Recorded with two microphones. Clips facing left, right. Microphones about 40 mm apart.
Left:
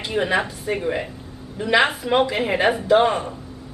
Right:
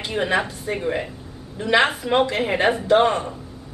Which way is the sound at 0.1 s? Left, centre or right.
Centre.